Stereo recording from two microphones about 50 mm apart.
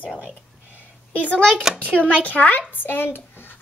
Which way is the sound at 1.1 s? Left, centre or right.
Left.